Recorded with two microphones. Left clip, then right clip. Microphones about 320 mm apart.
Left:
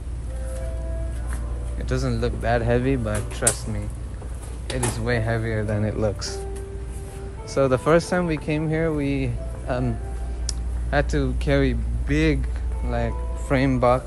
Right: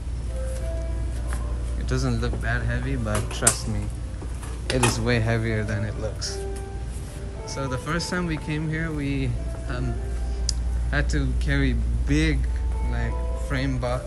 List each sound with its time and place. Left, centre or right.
1.9 s a man's voice: centre
3.1 s a man's voice: centre
5.9 s speech: centre
7.4 s speech: centre